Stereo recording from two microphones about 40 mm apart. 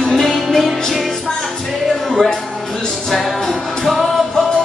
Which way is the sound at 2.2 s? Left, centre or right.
Centre.